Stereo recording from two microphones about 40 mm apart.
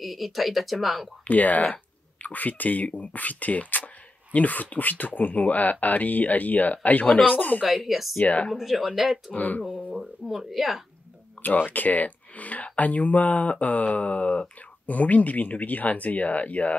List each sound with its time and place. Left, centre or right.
0.0 s speech: centre
1.2 s speech: left
7.6 s speech: centre
8.2 s speech: left
8.5 s speech: centre
9.3 s speech: left
9.9 s speech: centre
11.4 s speech: left